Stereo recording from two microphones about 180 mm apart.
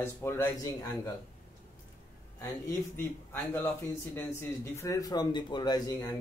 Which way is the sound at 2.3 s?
15° left (ahead or behind).